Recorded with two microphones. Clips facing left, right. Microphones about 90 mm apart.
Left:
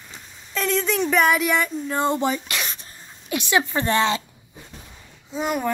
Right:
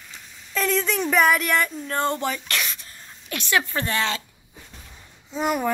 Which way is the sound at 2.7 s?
30° left (ahead or behind).